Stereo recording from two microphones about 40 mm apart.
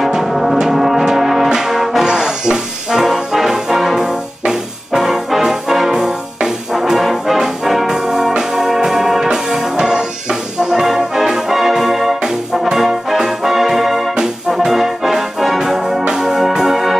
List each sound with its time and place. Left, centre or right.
0.1 s music: centre
2.0 s brass instrument: centre
8.4 s music: centre
12.2 s brass instrument: centre
12.7 s brass instrument: centre
14.5 s music: centre